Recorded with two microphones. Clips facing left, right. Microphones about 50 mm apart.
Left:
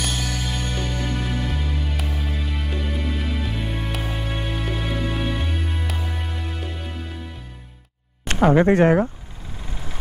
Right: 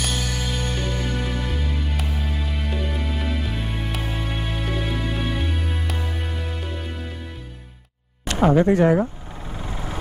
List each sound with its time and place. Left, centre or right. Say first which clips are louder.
0.0 s music: even; centre
8.5 s speech: left 1 dB; left
9.6 s vehicle: right 5 dB; right